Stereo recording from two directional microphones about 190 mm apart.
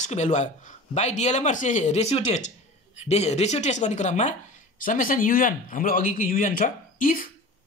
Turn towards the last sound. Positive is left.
turn(degrees=45)  # may be behind; listen again after turning